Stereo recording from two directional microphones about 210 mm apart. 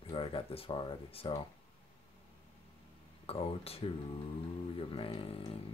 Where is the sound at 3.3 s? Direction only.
30° left (ahead or behind).